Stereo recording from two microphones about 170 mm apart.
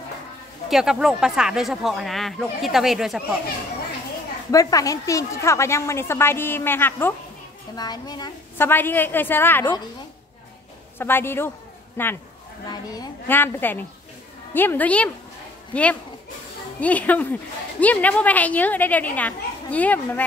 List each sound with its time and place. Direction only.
0.7 s speech: centre (ahead or behind)
4.5 s a woman's voice: 20° left (ahead or behind)
7.7 s a woman's voice: 25° left (ahead or behind)
8.5 s a woman's voice: 15° left (ahead or behind)
11.0 s a woman's voice: 15° left (ahead or behind)
13.3 s a woman's voice: 10° left (ahead or behind)